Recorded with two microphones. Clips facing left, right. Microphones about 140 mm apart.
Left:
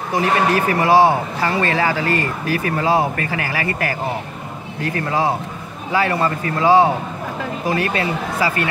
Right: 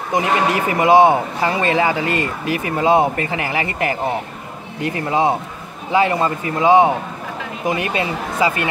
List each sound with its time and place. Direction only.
0.1 s speech: 20° right (ahead or behind)